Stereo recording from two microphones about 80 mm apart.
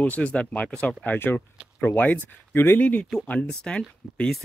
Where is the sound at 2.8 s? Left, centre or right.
Centre.